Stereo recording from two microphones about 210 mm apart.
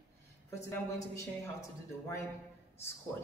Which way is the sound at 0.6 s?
15° left (ahead or behind).